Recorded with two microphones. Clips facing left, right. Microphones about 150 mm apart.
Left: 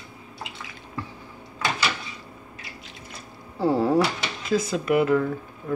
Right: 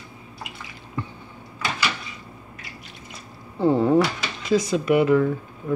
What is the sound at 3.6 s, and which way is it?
Speech, 5° left (ahead or behind).